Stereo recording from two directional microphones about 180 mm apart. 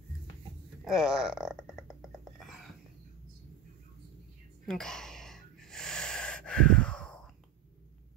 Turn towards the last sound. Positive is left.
turn(degrees=5)  # may be behind; listen again after turning